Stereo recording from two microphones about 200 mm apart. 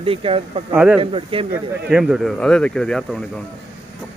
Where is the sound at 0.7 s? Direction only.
10° right (ahead or behind).